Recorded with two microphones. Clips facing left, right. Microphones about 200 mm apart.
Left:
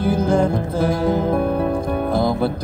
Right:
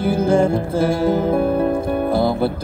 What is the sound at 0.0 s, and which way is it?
Music, 10° right (ahead or behind).